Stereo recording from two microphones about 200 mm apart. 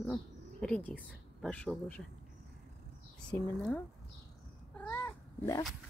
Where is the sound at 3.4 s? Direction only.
10° left (ahead or behind).